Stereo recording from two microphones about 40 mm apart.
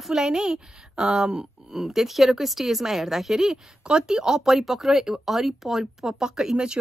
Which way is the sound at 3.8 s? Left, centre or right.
Centre.